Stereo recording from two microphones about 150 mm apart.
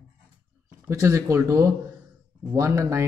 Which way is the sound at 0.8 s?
20° right (ahead or behind).